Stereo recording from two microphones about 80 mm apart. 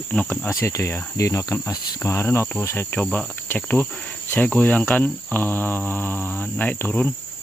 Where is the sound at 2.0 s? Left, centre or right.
Left.